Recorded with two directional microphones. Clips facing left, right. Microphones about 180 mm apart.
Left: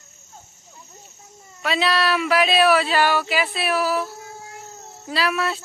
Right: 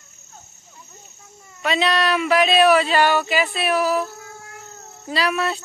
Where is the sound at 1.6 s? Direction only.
5° left (ahead or behind).